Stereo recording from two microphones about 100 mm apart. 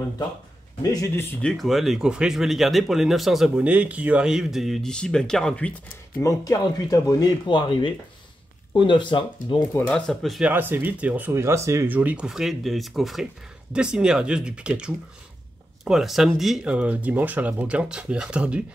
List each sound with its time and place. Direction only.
1.0 s speech: 25° left (ahead or behind)
1.4 s speech: centre (ahead or behind)
6.2 s speech: 35° left (ahead or behind); by 9.7 s 55° left (ahead or behind)
9.8 s speech: 5° left (ahead or behind)
10.5 s speech: 20° right (ahead or behind)
11.9 s speech: 15° right (ahead or behind)